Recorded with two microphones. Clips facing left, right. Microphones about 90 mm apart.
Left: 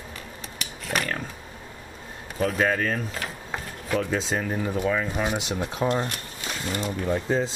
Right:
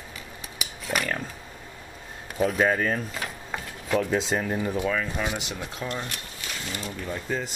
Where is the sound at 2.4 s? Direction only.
5° right (ahead or behind).